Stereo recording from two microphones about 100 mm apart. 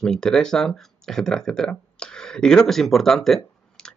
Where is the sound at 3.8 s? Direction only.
10° left (ahead or behind).